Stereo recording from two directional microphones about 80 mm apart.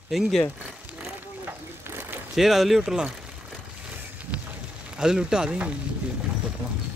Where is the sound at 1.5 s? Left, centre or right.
Right.